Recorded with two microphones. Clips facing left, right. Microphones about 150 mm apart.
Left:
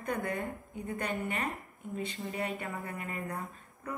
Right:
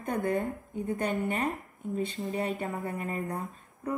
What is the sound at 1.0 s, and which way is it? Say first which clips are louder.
Speech: right 4 dB; 40° right (ahead or behind).